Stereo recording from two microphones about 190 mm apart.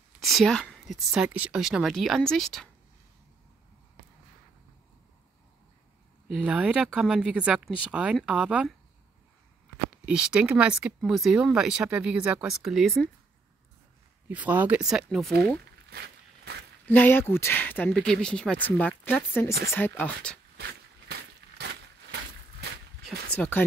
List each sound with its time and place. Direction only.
0.2 s speech: centre (ahead or behind)
6.2 s speech: 5° right (ahead or behind)
10.0 s speech: 5° right (ahead or behind)
14.3 s speech: 10° right (ahead or behind)
15.9 s walk: 55° right (ahead or behind)
16.8 s speech: 10° left (ahead or behind)
23.0 s speech: 10° left (ahead or behind)